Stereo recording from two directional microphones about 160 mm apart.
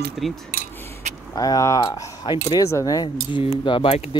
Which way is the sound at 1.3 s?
20° left (ahead or behind).